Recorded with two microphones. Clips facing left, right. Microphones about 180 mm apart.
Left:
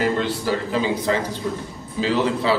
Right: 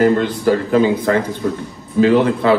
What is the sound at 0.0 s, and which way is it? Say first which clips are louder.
A man's voice: right 8 dB; 50° right (ahead or behind).